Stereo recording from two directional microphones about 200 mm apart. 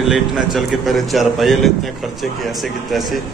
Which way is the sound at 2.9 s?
Centre (ahead or behind).